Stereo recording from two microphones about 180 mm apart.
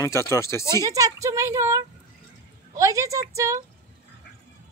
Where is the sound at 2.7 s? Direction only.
15° right (ahead or behind).